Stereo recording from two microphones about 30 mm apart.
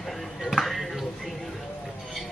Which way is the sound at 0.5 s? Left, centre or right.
Centre.